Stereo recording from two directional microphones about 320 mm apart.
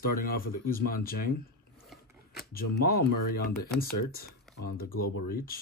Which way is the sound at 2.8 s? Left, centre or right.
Left.